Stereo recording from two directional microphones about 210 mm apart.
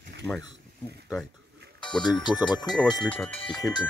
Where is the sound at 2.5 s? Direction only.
20° left (ahead or behind).